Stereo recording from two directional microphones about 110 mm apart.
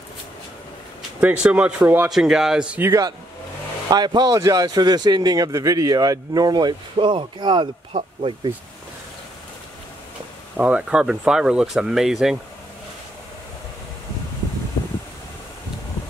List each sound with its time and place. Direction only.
1.2 s speech: 10° right (ahead or behind)
3.9 s a man's voice: 40° right (ahead or behind)
10.6 s speech: 10° right (ahead or behind)
14.8 s a sound: 50° left (ahead or behind)